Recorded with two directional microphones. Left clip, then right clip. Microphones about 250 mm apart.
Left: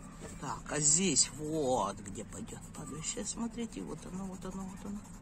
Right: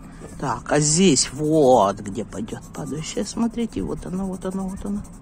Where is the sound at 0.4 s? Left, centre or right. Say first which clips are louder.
Right 15 dB; right.